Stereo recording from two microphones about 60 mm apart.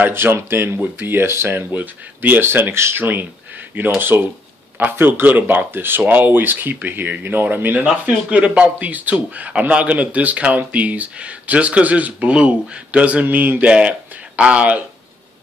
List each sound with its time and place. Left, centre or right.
0.0 s speech: right
8.3 s a man's voice: centre